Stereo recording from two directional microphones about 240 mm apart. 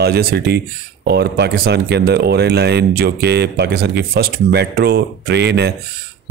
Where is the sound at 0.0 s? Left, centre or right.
Right.